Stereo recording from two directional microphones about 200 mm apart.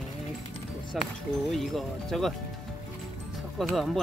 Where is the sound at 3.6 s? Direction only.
Centre (ahead or behind).